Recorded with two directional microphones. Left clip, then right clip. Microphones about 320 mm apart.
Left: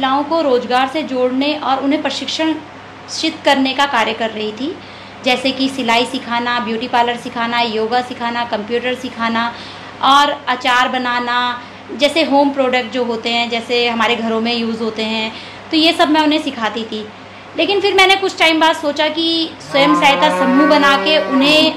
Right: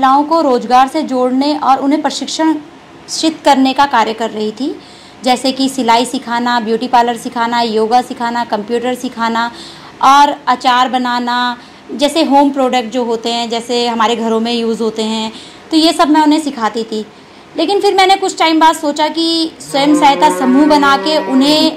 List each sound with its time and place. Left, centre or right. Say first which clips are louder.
0.3 s speech: right 4 dB; right